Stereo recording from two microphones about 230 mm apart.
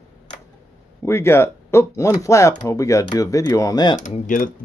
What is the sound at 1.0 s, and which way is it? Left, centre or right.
Speech, centre.